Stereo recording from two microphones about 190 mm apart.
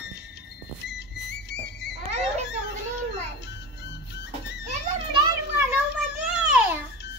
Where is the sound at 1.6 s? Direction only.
60° left (ahead or behind).